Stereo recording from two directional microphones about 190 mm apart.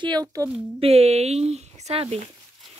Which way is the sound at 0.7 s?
30° right (ahead or behind).